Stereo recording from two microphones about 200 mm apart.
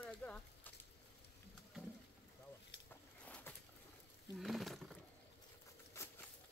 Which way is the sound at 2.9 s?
10° left (ahead or behind).